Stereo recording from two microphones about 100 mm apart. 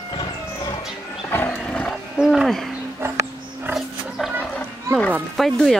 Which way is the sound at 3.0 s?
25° right (ahead or behind).